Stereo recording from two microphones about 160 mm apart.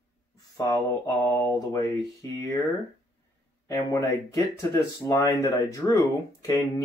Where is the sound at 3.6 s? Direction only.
20° left (ahead or behind).